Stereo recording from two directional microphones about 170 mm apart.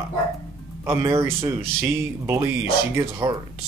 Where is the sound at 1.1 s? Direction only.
15° right (ahead or behind).